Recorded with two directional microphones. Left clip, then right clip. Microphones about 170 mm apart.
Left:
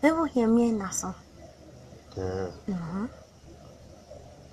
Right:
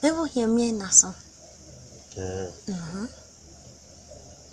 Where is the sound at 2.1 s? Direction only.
20° left (ahead or behind).